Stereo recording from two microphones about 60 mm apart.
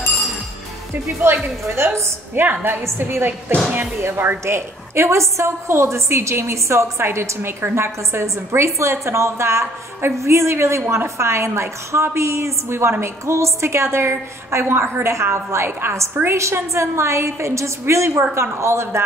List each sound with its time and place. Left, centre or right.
1.2 s a woman's voice: right
2.4 s a woman's voice: right